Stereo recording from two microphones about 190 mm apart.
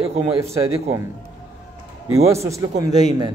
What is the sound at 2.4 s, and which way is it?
Speech, 15° right (ahead or behind).